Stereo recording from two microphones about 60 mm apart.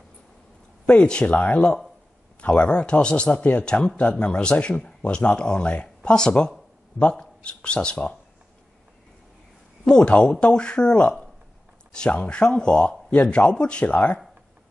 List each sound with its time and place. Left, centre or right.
0.8 s speech: centre
9.8 s speech: centre